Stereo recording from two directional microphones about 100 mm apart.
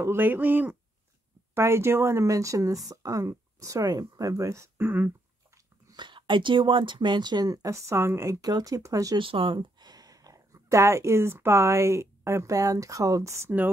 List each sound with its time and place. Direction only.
0.0 s speech: 20° right (ahead or behind)
5.9 s speech: 50° right (ahead or behind); by 9.2 s 35° right (ahead or behind)
9.2 s speech: 60° right (ahead or behind); by 13.7 s 25° right (ahead or behind)